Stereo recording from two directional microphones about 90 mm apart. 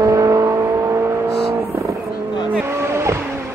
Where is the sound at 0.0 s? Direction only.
40° right (ahead or behind).